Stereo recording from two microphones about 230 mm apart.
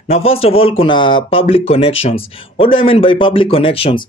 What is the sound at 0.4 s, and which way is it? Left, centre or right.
Speech, left.